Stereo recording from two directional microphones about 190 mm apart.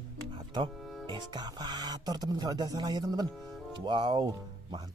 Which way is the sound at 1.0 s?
25° right (ahead or behind).